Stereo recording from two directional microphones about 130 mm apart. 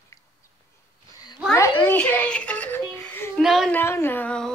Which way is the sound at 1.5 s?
15° left (ahead or behind).